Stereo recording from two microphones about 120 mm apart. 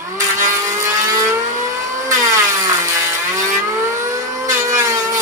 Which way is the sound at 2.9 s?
20° right (ahead or behind).